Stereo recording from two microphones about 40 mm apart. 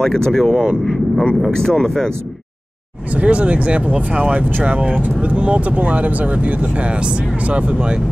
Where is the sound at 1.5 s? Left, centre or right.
Centre.